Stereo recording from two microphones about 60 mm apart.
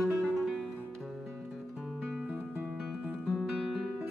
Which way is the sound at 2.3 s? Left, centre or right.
Right.